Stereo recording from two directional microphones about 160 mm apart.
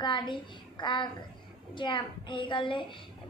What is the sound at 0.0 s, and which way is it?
A child's voice, 30° left (ahead or behind).